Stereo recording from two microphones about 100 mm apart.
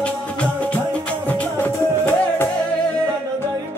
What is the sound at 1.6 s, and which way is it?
Music, 20° left (ahead or behind).